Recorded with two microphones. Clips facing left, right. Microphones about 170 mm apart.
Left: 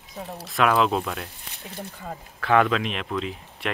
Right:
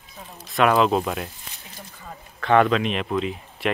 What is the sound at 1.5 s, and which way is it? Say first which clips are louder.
Speech: left 6 dB; 60° left (ahead or behind).